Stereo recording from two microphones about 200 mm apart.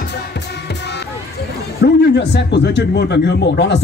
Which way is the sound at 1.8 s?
55° left (ahead or behind).